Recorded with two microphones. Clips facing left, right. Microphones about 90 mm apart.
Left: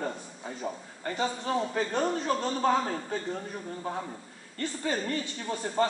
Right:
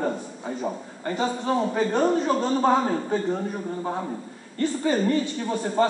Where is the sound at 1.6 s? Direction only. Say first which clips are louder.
Right 7 dB; 30° right (ahead or behind).